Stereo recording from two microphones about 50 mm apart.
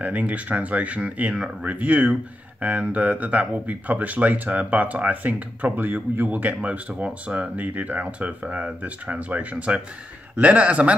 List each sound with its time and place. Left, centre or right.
0.0 s speech: right